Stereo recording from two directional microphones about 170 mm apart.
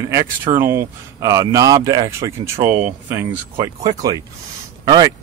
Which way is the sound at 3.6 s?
25° right (ahead or behind).